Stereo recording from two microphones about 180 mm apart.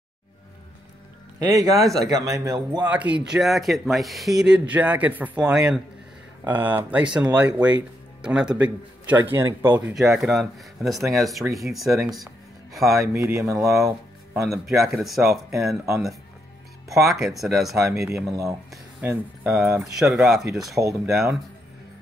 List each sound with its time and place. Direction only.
1.5 s speech: 20° right (ahead or behind)
1.8 s speech: centre (ahead or behind)
2.0 s a man's voice: 20° right (ahead or behind)
2.9 s speech: 10° right (ahead or behind)
12.8 s speech: 15° right (ahead or behind)
13.7 s a sound: 15° right (ahead or behind)
14.4 s speech: centre (ahead or behind)
16.9 s speech: centre (ahead or behind)
18.3 s speech: 15° right (ahead or behind)